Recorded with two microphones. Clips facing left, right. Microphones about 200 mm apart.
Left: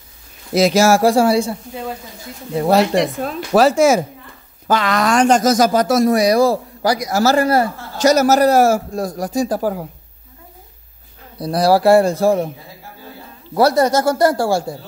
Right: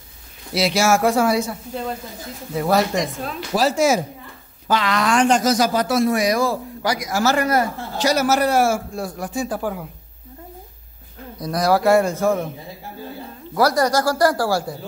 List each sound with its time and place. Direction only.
0.5 s speech: 45° left (ahead or behind); by 2.8 s 25° left (ahead or behind)
3.0 s speech: 55° left (ahead or behind); by 9.8 s 40° left (ahead or behind)
11.3 s speech: 30° left (ahead or behind)
13.6 s speech: 25° left (ahead or behind)